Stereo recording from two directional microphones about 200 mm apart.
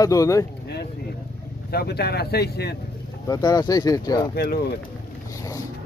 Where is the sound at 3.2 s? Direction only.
20° left (ahead or behind).